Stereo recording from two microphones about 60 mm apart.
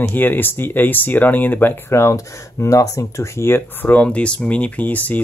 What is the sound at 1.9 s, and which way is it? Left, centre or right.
Speech, left.